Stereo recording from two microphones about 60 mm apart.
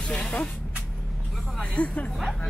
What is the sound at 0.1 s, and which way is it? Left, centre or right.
Vehicle, left.